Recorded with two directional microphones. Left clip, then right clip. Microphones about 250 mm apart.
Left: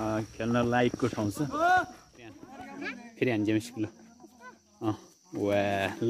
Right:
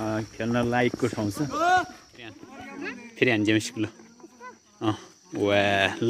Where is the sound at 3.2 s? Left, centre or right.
Centre.